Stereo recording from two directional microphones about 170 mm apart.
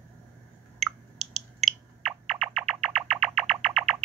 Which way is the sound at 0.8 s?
Centre (ahead or behind).